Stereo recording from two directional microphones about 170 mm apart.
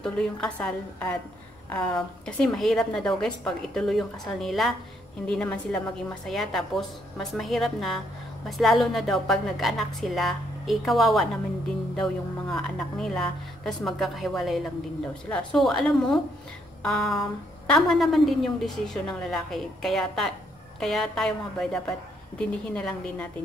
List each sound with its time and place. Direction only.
0.0 s a woman's voice: 5° left (ahead or behind)
12.4 s a woman's voice: 5° left (ahead or behind)